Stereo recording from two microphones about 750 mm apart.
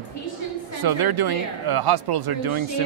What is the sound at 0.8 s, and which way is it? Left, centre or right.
Speech, right.